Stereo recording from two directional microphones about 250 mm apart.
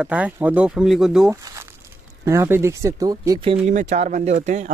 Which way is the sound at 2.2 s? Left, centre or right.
Centre.